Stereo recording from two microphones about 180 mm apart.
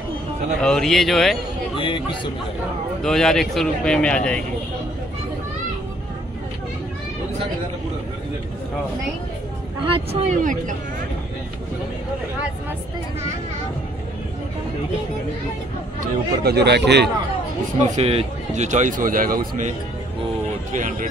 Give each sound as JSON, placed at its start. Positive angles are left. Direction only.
{"t": 0.6, "sound": "speech", "side_deg": 5}
{"t": 3.0, "sound": "speech", "side_deg": 0}
{"t": 9.8, "sound": "speech", "side_deg": -35}
{"t": 16.4, "sound": "speech", "side_deg": -70}
{"t": 17.7, "sound": "speech", "side_deg": -35}
{"t": 20.7, "sound": "speech", "side_deg": -45}